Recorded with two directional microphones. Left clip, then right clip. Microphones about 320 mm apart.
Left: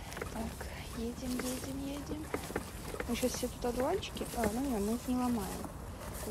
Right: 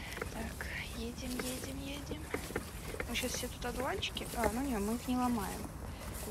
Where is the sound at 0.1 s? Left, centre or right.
Centre.